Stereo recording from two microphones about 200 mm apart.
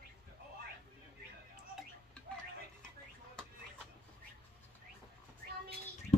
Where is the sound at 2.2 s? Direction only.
5° left (ahead or behind).